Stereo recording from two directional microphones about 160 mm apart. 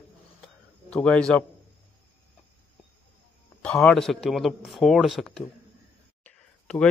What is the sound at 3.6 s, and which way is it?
Speech, 5° left (ahead or behind).